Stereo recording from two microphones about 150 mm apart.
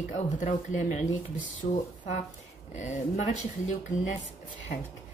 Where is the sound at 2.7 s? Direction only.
55° left (ahead or behind).